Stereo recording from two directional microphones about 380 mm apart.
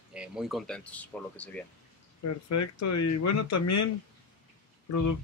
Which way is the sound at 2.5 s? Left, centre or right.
Left.